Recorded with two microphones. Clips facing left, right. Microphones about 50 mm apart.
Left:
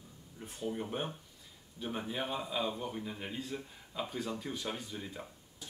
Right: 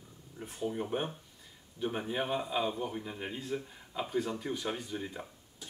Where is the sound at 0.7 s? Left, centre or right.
Centre.